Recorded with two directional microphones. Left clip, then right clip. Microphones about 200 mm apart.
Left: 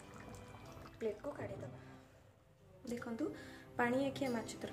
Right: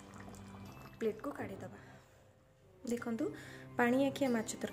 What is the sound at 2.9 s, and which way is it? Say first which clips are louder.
Speech: right 4 dB; 30° right (ahead or behind).